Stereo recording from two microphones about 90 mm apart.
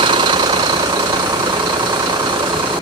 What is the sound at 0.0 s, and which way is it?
Vehicle, 65° right (ahead or behind).